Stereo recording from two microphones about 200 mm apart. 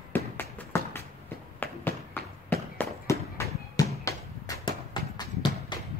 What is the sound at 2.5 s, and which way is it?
Fireworks, 15° left (ahead or behind).